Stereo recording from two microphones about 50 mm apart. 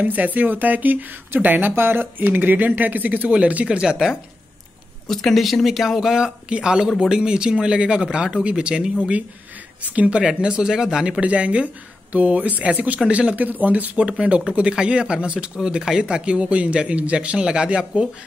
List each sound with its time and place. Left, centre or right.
0.0 s speech: right
5.0 s a man's voice: centre
9.8 s a man's voice: right
11.2 s a man's voice: right
14.0 s a man's voice: right